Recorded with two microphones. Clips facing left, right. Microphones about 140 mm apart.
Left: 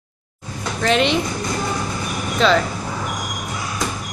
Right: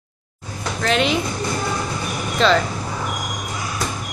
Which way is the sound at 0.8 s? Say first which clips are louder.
Left 2 dB; centre (ahead or behind).